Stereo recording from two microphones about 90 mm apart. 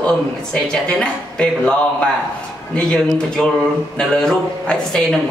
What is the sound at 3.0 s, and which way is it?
Speech, 10° left (ahead or behind).